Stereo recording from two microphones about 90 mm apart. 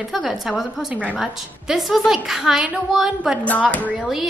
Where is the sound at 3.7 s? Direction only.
15° left (ahead or behind).